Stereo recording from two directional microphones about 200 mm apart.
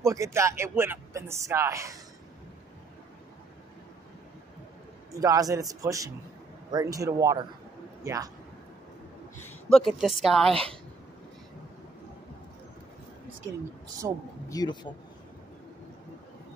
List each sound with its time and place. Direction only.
0.0 s speech: 15° right (ahead or behind)
5.1 s a man's voice: 15° right (ahead or behind)
9.4 s a woman's voice: 5° left (ahead or behind)
14.0 s speech: 15° right (ahead or behind)
14.5 s speech: 20° left (ahead or behind)